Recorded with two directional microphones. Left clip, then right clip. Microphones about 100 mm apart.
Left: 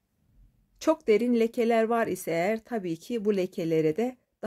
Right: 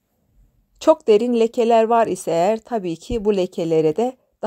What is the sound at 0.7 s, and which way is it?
A woman's voice, 35° right (ahead or behind).